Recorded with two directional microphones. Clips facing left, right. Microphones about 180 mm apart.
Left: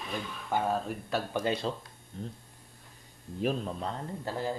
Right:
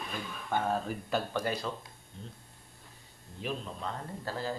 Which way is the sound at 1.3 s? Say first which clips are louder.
Left 3 dB; 25° left (ahead or behind).